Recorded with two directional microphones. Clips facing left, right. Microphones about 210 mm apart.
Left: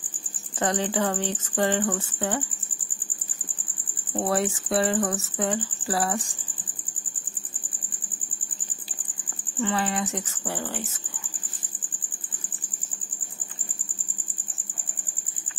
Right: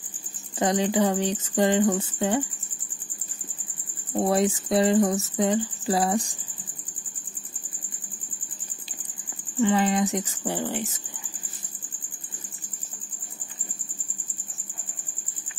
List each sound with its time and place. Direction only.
0.6 s speech: 15° right (ahead or behind)
4.1 s speech: 15° right (ahead or behind)
9.6 s speech: 15° right (ahead or behind)